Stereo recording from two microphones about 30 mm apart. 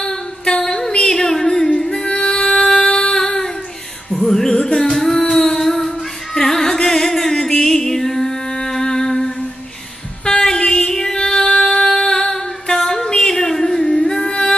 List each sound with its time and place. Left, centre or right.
0.0 s music: left
1.9 s music: left
2.8 s a sound: left
4.3 s music: centre
4.7 s singing: centre
5.3 s music: centre